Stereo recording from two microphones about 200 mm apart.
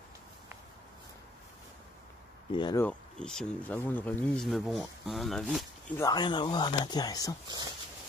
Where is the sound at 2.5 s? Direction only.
20° left (ahead or behind).